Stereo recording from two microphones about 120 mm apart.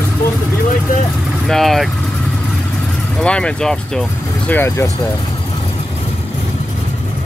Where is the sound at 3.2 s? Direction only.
10° left (ahead or behind).